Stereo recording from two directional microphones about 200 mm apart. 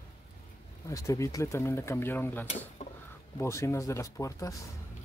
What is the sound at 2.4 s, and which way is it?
Speech, 35° left (ahead or behind).